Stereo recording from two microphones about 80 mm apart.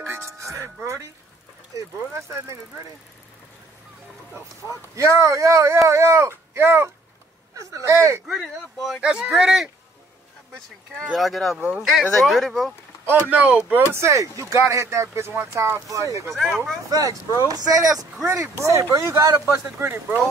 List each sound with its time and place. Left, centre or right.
0.1 s music: right
1.8 s speech: right
4.6 s speech: right
8.3 s speech: centre
9.0 s speech: centre
11.0 s speech: centre
13.3 s speech: centre
13.9 s speech: right
16.3 s speech: centre
16.9 s speech: right
19.8 s speech: right